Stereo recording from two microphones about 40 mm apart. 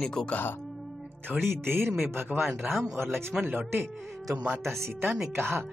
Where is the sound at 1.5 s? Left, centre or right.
Right.